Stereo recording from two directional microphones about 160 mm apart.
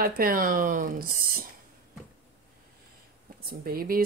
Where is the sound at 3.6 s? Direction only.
65° right (ahead or behind).